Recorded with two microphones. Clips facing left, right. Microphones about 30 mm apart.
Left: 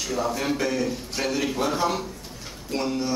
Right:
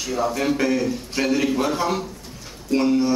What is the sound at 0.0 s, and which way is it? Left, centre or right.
A man's voice, centre.